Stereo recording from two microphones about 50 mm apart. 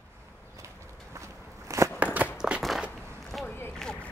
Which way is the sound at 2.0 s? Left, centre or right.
Right.